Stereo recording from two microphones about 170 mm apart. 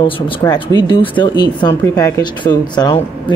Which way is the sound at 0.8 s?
30° left (ahead or behind).